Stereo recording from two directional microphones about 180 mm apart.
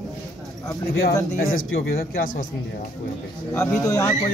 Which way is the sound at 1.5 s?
50° left (ahead or behind).